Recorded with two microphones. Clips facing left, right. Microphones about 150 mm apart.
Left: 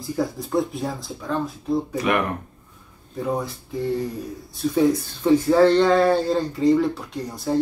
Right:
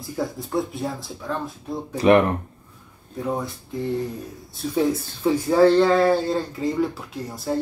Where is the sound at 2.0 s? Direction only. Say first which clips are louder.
Right 10 dB; 30° right (ahead or behind).